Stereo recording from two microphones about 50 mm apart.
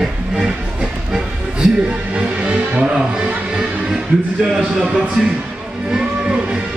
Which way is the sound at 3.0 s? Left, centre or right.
Centre.